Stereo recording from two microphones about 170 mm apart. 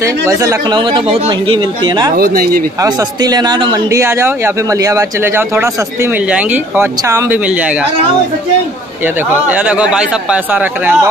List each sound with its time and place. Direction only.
0.0 s speech: 20° right (ahead or behind)
2.1 s speech: 60° right (ahead or behind)
2.8 s a man's voice: 20° right (ahead or behind)
9.0 s a man's voice: 10° right (ahead or behind)